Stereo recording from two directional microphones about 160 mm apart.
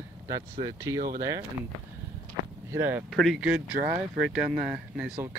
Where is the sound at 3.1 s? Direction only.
Centre (ahead or behind).